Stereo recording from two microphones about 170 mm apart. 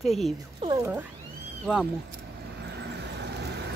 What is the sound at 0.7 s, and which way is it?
Speech, 15° right (ahead or behind).